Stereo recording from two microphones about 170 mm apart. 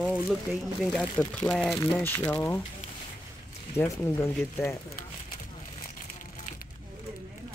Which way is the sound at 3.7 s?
15° left (ahead or behind).